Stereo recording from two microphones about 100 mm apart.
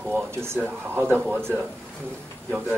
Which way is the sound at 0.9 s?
25° right (ahead or behind).